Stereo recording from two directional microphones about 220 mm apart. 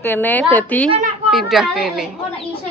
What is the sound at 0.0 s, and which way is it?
A woman's voice, 10° left (ahead or behind).